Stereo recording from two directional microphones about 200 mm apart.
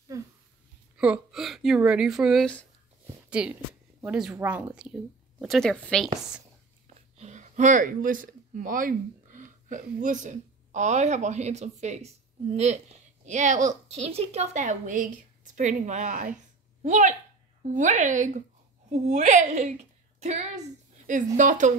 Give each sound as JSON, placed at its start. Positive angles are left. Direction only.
{"t": 0.1, "sound": "dog", "side_deg": -15}
{"t": 0.9, "sound": "speech", "side_deg": -5}
{"t": 7.2, "sound": "a woman's voice", "side_deg": -35}